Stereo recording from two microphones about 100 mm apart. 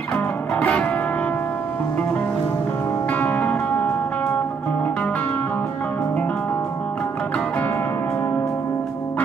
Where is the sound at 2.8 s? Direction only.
15° left (ahead or behind).